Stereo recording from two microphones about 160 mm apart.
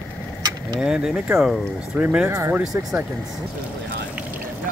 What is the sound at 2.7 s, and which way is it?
Speech, 5° right (ahead or behind).